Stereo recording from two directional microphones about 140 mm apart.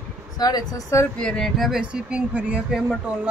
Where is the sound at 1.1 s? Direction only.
5° left (ahead or behind); by 2.8 s 10° right (ahead or behind).